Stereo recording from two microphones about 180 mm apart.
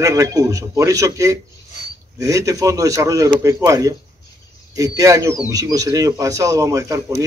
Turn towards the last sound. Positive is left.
turn(degrees=-15)  # may be behind; listen again after turning